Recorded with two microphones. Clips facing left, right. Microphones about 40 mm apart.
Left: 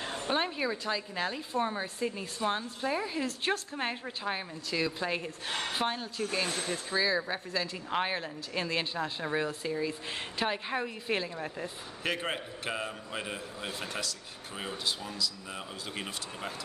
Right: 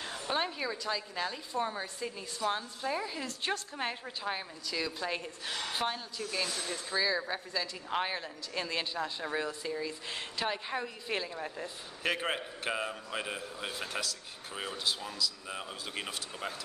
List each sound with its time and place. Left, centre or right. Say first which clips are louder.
0.3 s a woman's voice: left 2 dB; centre
3.3 s speech: left 3 dB; centre
3.7 s a woman's voice: left 2 dB; centre
6.5 s speech: left 3 dB; left
6.9 s a woman's voice: left 2 dB; centre